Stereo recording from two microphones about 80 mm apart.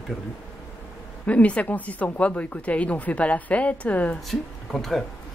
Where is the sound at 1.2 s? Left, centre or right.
Centre.